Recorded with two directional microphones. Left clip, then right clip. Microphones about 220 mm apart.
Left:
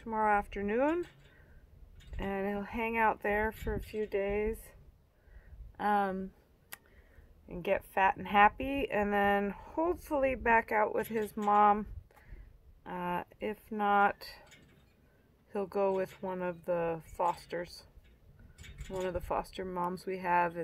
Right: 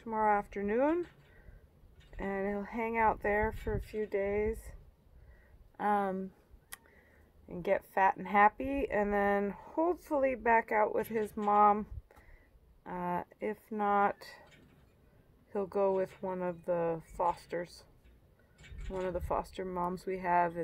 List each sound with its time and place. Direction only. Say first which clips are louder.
0.0 s speech: even; 5° left (ahead or behind)
2.1 s speech: even; 5° left (ahead or behind)
5.8 s speech: left 1 dB; 5° left (ahead or behind)
7.4 s speech: right 1 dB; 10° left (ahead or behind)
15.5 s speech: right 1 dB; 10° left (ahead or behind)
18.6 s a sound: even; 55° left (ahead or behind)
19.0 s speech: even; 10° left (ahead or behind)